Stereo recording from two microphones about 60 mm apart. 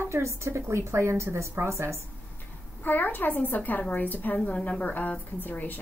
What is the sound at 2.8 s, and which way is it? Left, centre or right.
A woman's voice, left.